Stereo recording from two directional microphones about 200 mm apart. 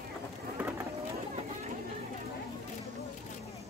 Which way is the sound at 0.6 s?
10° right (ahead or behind).